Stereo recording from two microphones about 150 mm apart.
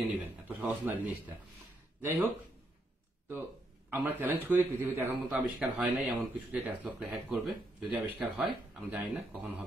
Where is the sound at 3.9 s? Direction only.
15° right (ahead or behind).